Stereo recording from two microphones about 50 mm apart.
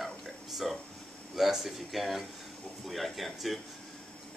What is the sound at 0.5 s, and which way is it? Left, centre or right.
Speech, centre.